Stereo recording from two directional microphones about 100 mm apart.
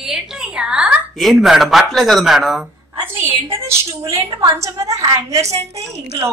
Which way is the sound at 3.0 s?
20° right (ahead or behind).